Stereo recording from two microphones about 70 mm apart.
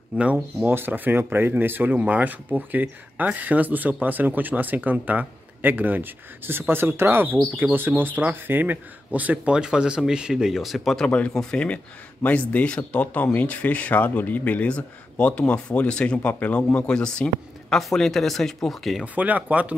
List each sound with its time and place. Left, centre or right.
0.7 s speech: right; by 11.1 s centre
11.1 s speech: centre
19.1 s speech: right